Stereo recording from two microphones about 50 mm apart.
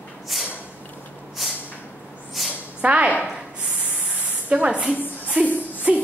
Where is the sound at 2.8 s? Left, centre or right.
Right.